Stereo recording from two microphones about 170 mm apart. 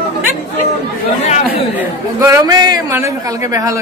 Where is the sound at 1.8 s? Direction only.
20° right (ahead or behind).